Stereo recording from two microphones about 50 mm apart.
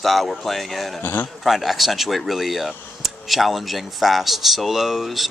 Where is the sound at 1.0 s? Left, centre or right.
Left.